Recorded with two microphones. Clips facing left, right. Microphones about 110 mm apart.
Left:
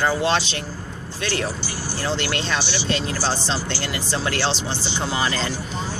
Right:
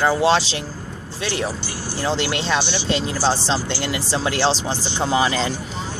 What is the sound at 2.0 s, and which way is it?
Speech, 20° right (ahead or behind).